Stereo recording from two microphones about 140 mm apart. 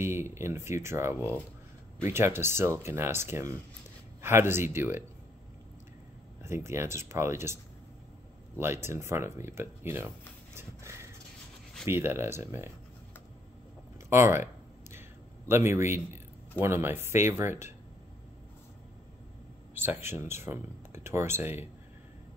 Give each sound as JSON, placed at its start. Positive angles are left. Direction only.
{"t": 0.0, "sound": "speech", "side_deg": -20}
{"t": 6.4, "sound": "speech", "side_deg": -20}
{"t": 8.5, "sound": "speech", "side_deg": -20}
{"t": 10.5, "sound": "horse", "side_deg": -20}
{"t": 11.8, "sound": "speech", "side_deg": -15}
{"t": 14.0, "sound": "speech", "side_deg": -20}
{"t": 19.7, "sound": "speech", "side_deg": -15}